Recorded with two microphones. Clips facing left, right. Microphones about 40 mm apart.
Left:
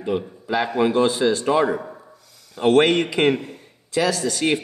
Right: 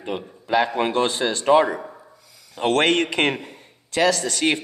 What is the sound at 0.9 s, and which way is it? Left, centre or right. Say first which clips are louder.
Speech: left 3 dB; right.